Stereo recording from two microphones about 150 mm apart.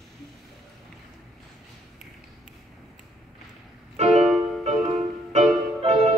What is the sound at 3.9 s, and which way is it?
Music, 45° right (ahead or behind).